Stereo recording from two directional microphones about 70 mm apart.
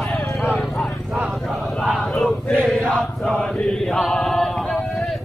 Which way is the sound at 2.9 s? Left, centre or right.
Centre.